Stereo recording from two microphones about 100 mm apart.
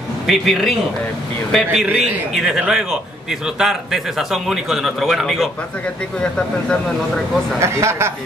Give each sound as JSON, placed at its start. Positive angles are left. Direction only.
{"t": 0.3, "sound": "a man's voice", "side_deg": 0}
{"t": 7.6, "sound": "speech", "side_deg": -25}